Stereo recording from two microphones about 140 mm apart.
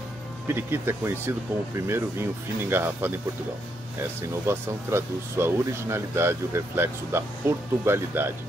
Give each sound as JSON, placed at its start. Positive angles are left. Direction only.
{"t": 0.5, "sound": "speech", "side_deg": -15}
{"t": 4.5, "sound": "speech", "side_deg": -20}